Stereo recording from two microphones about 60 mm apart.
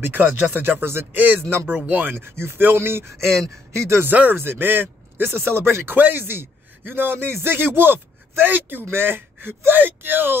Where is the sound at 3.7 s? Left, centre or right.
Right.